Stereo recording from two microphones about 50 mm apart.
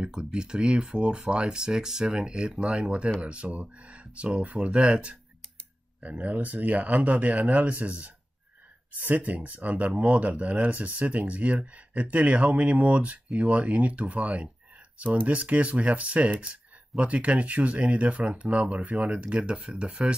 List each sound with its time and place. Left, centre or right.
0.0 s speech: centre